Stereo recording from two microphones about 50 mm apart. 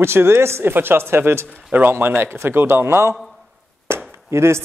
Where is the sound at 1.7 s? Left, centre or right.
Right.